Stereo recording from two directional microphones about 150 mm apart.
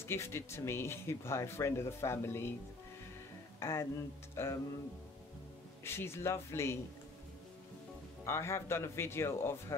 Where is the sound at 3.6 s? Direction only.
20° left (ahead or behind).